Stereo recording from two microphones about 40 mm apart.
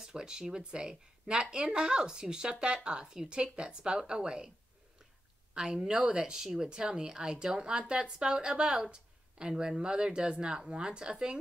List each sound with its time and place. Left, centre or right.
0.0 s speech: centre
5.5 s speech: right
6.4 s speech: centre
6.7 s speech: centre